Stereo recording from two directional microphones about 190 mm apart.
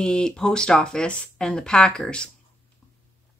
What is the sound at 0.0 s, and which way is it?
Speech, 5° left (ahead or behind).